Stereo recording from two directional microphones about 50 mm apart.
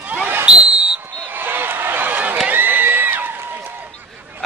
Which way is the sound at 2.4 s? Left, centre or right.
Right.